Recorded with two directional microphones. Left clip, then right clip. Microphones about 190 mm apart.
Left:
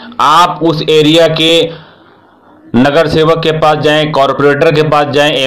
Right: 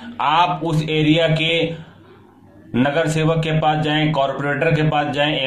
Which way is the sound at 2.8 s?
30° left (ahead or behind).